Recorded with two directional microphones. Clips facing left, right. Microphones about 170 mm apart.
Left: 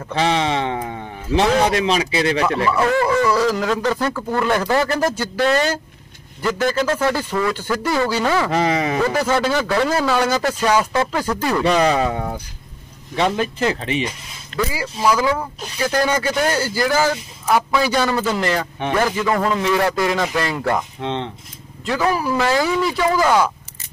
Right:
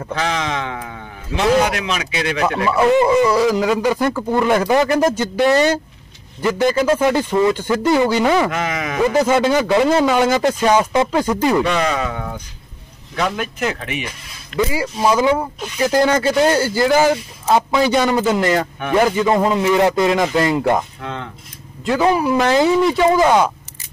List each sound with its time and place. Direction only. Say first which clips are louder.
0.1 s speech: left 3 dB; 30° left (ahead or behind)
2.4 s a man's voice: right 2 dB; 30° right (ahead or behind)
8.5 s speech: left 4 dB; 35° left (ahead or behind)
9.0 s speech: right 8 dB; 15° right (ahead or behind)
11.6 s speech: left 3 dB; 35° left (ahead or behind)
14.6 s speech: right 3 dB; 25° right (ahead or behind)
21.0 s speech: left 4 dB; 30° left (ahead or behind)
21.8 s speech: right 4 dB; 20° right (ahead or behind)